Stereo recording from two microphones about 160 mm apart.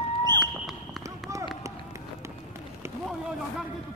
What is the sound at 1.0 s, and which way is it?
Run, 20° right (ahead or behind).